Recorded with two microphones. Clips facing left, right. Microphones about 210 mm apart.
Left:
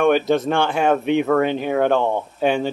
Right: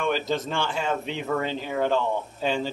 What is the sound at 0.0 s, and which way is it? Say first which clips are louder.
Speech: left 9 dB; 60° left (ahead or behind).